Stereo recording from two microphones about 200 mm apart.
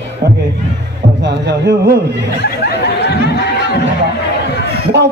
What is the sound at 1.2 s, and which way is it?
Speech, 55° right (ahead or behind).